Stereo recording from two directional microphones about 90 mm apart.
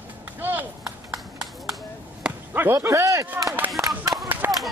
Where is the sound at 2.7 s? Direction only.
40° right (ahead or behind).